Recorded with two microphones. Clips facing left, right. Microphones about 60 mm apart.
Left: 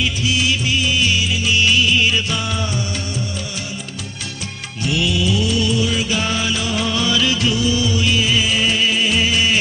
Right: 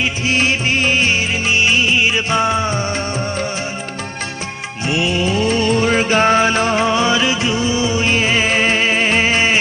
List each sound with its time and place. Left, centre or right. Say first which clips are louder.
0.0 s music: right 3 dB; right
4.8 s music: right 2 dB; right